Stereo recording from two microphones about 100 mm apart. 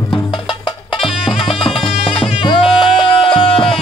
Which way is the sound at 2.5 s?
60° left (ahead or behind).